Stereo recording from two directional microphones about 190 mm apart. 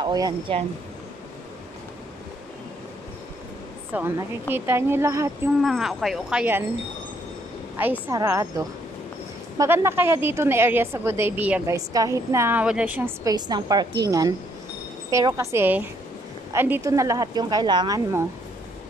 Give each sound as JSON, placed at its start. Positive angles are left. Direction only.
{"t": 0.0, "sound": "speech", "side_deg": -20}
{"t": 3.9, "sound": "a woman's voice", "side_deg": -10}
{"t": 5.6, "sound": "speech", "side_deg": 0}
{"t": 7.8, "sound": "a woman's voice", "side_deg": -10}